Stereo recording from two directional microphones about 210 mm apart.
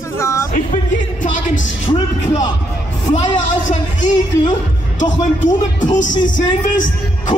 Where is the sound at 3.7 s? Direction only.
35° left (ahead or behind).